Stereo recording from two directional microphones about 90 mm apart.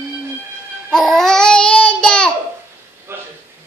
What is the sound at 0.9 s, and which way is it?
Babbling, centre (ahead or behind).